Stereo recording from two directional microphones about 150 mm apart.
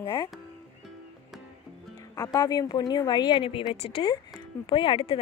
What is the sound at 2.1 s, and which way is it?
A woman's voice, 25° left (ahead or behind).